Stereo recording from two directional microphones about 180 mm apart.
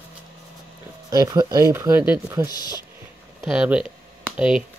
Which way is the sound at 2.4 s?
20° left (ahead or behind).